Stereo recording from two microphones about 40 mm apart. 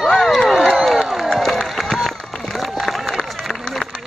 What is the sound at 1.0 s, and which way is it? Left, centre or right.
Crowd, centre.